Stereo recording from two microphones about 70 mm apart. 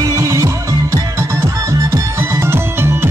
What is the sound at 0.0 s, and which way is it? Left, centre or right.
Music, right.